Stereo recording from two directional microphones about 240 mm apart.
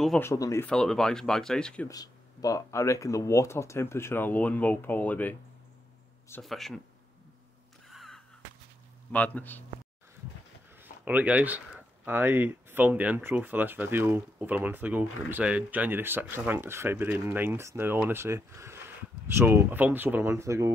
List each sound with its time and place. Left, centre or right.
0.0 s speech: centre
0.3 s speech: centre
1.9 s speech: centre
7.9 s a sound: centre
9.1 s speech: centre
10.8 s speech: centre